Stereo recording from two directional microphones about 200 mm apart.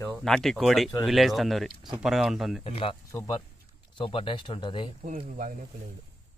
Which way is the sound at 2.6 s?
30° left (ahead or behind).